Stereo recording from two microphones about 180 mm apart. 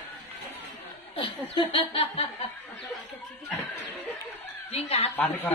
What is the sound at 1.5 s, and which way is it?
Chuckle, 30° left (ahead or behind).